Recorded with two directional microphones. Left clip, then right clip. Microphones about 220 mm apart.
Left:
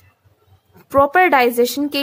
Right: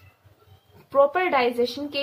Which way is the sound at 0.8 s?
45° left (ahead or behind).